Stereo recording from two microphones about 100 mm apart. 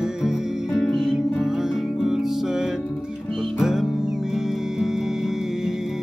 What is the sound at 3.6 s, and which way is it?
Music, 5° right (ahead or behind).